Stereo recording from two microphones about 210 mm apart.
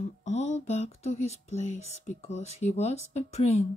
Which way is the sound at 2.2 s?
30° left (ahead or behind).